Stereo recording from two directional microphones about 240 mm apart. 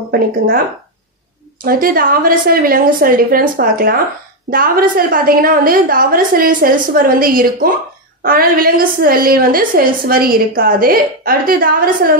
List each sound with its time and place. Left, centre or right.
1.6 s a woman's voice: right